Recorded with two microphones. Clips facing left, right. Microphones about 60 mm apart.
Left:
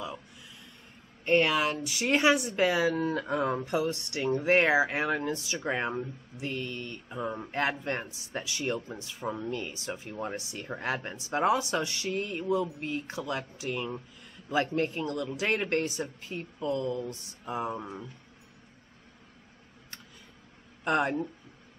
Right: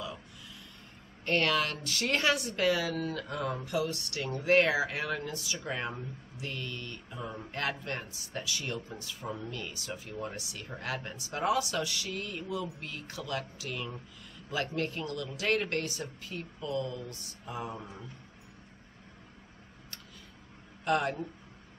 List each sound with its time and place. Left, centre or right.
1.2 s speech: centre
20.8 s speech: left